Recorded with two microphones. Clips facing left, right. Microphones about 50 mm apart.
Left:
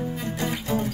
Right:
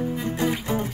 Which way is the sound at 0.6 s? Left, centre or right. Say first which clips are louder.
Even; right.